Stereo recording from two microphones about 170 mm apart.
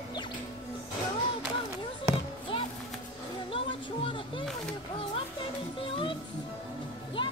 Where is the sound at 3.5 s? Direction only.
30° left (ahead or behind).